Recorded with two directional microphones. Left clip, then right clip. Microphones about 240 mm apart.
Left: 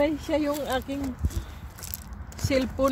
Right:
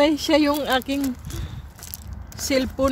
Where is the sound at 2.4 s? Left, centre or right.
Right.